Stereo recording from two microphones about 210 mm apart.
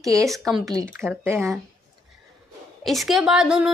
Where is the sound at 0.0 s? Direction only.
15° right (ahead or behind).